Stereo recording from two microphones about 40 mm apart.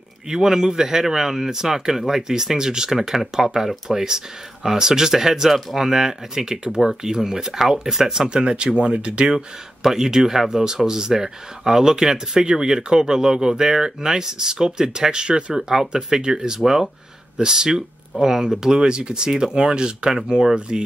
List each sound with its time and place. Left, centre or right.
0.3 s speech: centre
8.3 s speech: right
9.8 s speech: centre